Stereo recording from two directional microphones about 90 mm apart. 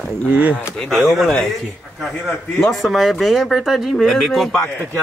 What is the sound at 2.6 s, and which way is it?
Speech, centre (ahead or behind).